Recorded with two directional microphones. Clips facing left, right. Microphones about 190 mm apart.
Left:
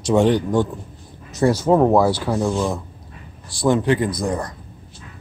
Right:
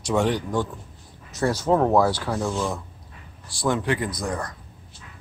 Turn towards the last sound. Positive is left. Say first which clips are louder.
# left 6 dB
turn(degrees=25)  # may be behind; listen again after turning